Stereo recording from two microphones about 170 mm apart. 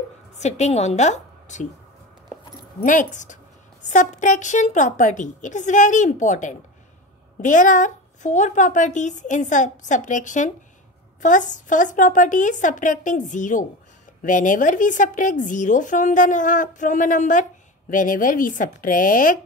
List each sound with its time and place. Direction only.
0.4 s a woman's voice: 40° left (ahead or behind)
2.8 s speech: 50° left (ahead or behind)